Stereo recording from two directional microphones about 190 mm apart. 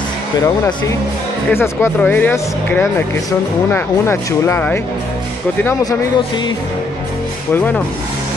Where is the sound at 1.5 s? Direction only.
10° left (ahead or behind).